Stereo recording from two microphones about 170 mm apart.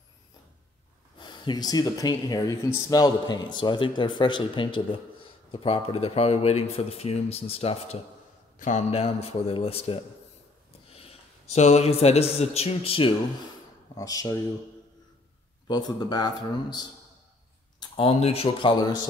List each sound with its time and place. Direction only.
1.1 s a man's voice: 25° left (ahead or behind)
13.9 s speech: 20° left (ahead or behind)
15.6 s speech: 25° left (ahead or behind)